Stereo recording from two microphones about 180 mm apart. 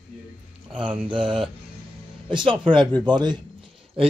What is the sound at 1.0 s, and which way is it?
Speech, 25° right (ahead or behind).